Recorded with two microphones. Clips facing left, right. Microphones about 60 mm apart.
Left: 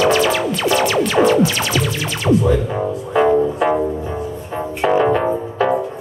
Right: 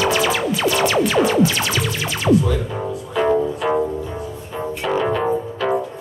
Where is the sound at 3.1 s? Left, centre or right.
Left.